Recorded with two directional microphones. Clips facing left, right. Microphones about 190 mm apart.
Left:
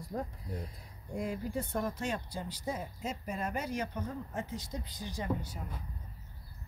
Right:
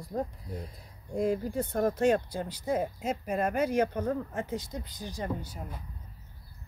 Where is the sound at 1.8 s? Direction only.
55° right (ahead or behind).